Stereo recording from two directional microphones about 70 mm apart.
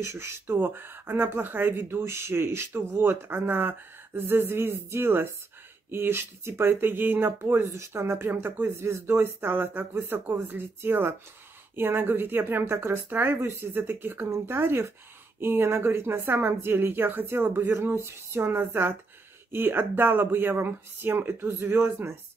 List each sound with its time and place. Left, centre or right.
0.0 s speech: right